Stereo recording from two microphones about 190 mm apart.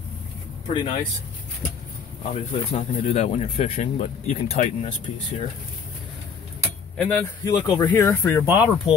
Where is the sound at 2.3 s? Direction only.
35° left (ahead or behind).